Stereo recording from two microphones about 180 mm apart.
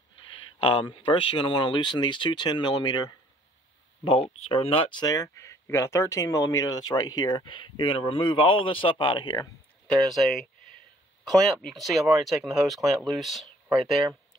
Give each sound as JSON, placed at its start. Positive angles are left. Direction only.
{"t": 0.3, "sound": "speech", "side_deg": 30}
{"t": 9.8, "sound": "speech", "side_deg": 0}